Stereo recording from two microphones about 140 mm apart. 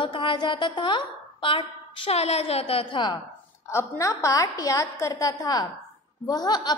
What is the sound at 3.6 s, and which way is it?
A woman's voice, 20° left (ahead or behind).